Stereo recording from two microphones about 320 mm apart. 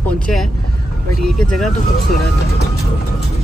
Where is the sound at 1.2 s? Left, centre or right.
Centre.